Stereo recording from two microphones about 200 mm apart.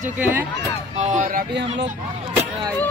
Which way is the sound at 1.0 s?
35° right (ahead or behind).